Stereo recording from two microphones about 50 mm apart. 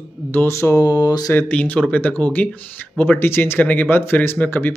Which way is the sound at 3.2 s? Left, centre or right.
Left.